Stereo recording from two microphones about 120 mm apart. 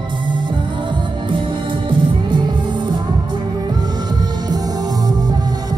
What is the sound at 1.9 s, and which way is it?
Music, 40° right (ahead or behind).